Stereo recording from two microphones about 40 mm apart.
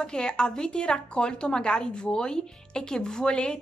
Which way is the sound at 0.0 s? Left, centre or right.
Centre.